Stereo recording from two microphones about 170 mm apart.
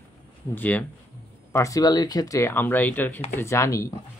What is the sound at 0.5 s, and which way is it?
Speech, 10° left (ahead or behind).